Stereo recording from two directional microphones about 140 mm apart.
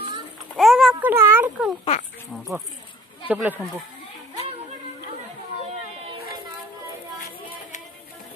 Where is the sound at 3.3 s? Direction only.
10° right (ahead or behind).